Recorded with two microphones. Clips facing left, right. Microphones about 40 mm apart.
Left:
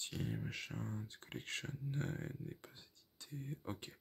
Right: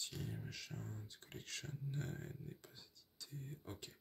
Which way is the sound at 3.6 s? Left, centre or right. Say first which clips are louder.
Left 6 dB; left.